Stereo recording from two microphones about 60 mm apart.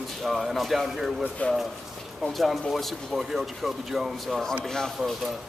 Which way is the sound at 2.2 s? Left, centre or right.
Centre.